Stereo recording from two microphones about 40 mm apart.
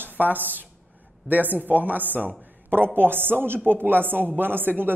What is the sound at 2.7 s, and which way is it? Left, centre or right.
Speech, right.